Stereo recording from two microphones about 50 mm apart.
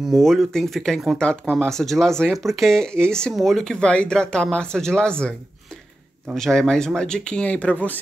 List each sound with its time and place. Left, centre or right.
0.1 s speech: centre
1.1 s speech: centre
6.3 s speech: centre; by 8.0 s left